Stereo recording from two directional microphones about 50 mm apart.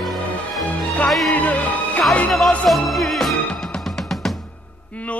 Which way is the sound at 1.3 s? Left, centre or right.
Left.